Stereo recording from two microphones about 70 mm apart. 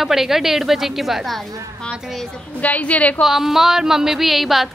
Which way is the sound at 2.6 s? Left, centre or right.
Left.